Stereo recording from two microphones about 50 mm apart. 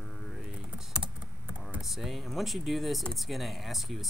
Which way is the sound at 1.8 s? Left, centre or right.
Centre.